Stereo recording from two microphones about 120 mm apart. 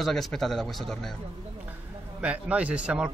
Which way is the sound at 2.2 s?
10° right (ahead or behind).